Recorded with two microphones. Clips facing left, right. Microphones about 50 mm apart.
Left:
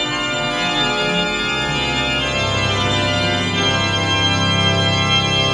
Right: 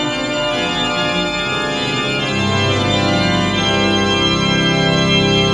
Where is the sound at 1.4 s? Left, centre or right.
Centre.